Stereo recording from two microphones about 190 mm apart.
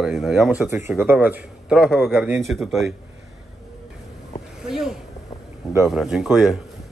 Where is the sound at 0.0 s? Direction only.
Centre (ahead or behind).